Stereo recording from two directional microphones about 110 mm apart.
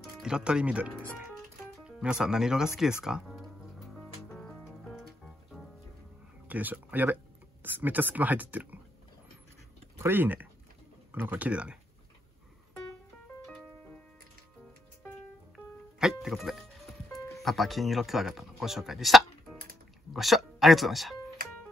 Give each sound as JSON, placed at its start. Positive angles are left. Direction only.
{"t": 0.2, "sound": "speech", "side_deg": -5}
{"t": 3.9, "sound": "music", "side_deg": 10}
{"t": 6.4, "sound": "speech", "side_deg": -15}
{"t": 9.9, "sound": "speech", "side_deg": -20}
{"t": 15.5, "sound": "music", "side_deg": -5}
{"t": 17.3, "sound": "speech", "side_deg": 0}